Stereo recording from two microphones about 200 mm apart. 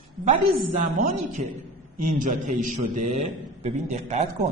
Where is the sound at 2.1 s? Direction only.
40° right (ahead or behind).